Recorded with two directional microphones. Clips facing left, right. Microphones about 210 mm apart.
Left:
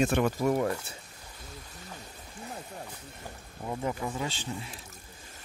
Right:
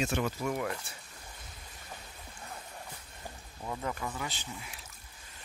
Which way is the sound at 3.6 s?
20° left (ahead or behind).